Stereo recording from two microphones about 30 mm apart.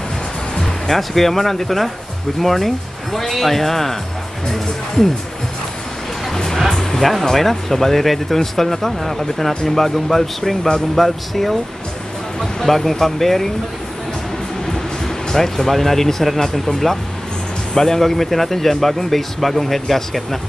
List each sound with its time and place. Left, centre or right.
0.6 s speech: centre
6.3 s music: centre
7.0 s speech: centre
15.2 s speech: centre